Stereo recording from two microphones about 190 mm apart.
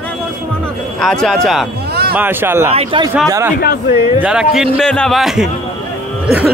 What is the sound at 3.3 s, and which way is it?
Speech, 15° right (ahead or behind).